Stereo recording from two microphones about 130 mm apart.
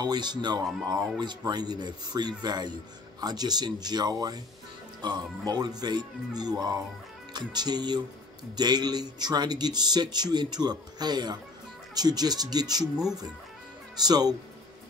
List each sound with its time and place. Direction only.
0.0 s a man's voice: 35° right (ahead or behind)
13.9 s a man's voice: 30° right (ahead or behind)